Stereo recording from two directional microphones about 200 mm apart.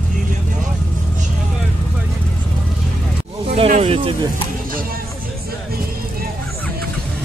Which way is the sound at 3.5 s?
30° right (ahead or behind).